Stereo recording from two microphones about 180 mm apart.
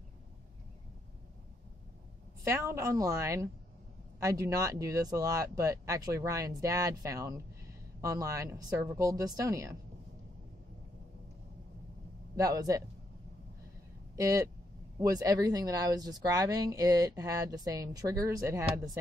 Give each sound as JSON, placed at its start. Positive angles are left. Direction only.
{"t": 2.4, "sound": "a woman's voice", "side_deg": -15}
{"t": 12.4, "sound": "speech", "side_deg": -20}
{"t": 14.1, "sound": "speech", "side_deg": -20}